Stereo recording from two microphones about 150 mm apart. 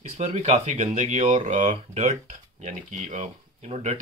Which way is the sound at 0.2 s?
50° right (ahead or behind).